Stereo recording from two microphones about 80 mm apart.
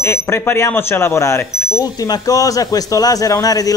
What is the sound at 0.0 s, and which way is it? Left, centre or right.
A man's voice, left.